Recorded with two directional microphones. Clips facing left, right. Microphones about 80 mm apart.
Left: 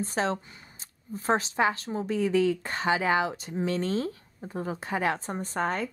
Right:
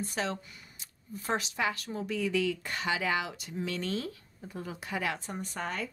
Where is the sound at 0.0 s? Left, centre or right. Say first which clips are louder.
Left 6 dB; left.